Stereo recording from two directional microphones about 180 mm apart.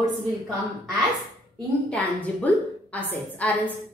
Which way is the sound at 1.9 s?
10° left (ahead or behind).